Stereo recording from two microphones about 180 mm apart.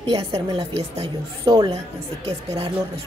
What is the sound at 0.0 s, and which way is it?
A woman's voice, 25° right (ahead or behind).